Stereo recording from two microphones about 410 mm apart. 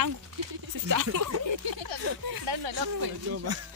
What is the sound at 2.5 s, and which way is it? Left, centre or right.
Speech, right.